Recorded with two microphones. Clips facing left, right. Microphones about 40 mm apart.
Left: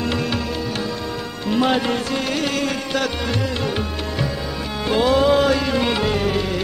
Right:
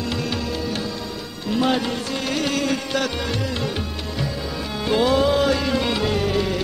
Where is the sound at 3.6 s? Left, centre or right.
Left.